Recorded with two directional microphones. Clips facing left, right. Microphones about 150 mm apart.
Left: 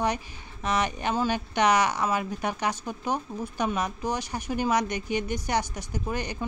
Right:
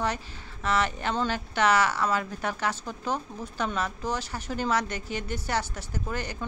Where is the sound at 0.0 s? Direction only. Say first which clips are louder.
Left 2 dB; 15° left (ahead or behind).